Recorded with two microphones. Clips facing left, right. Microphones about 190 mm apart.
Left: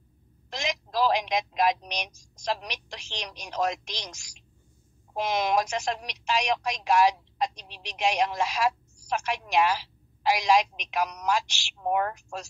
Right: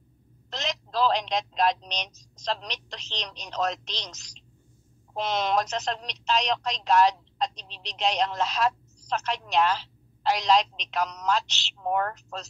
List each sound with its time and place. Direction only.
0.5 s a woman's voice: 10° left (ahead or behind)